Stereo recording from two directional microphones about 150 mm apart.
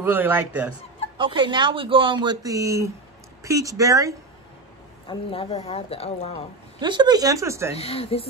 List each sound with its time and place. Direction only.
0.0 s a man's voice: 15° right (ahead or behind)
1.1 s speech: 35° right (ahead or behind)
5.0 s speech: 40° left (ahead or behind)
6.8 s speech: 30° right (ahead or behind)
7.7 s speech: 40° left (ahead or behind)